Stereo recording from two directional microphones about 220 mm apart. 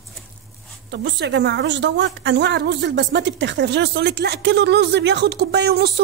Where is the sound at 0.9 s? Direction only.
50° right (ahead or behind).